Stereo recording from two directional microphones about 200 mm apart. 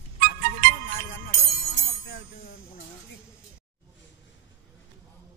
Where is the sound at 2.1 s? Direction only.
45° left (ahead or behind).